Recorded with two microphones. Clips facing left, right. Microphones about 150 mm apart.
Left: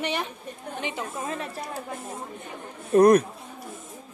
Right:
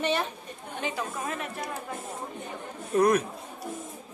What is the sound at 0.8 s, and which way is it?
Speech, 20° left (ahead or behind).